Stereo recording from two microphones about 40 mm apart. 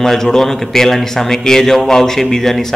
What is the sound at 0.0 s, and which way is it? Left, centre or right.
A man's voice, centre.